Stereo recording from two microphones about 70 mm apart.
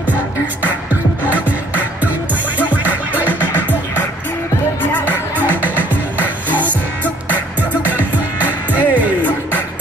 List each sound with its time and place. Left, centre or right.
2.0 s music: right
8.7 s music: right